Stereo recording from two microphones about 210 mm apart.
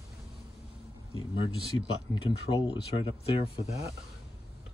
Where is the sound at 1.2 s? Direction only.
25° left (ahead or behind).